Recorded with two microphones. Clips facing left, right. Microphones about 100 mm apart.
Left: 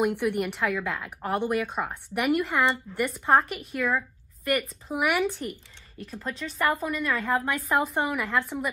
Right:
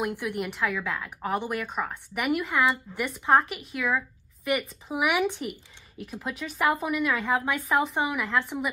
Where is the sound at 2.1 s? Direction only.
Centre (ahead or behind).